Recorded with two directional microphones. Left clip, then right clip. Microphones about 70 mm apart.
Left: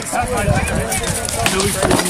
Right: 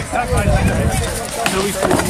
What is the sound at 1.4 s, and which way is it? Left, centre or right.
Speech, left.